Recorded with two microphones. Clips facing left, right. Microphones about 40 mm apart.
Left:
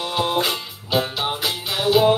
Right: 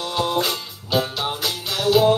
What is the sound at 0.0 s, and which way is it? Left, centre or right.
Music, left.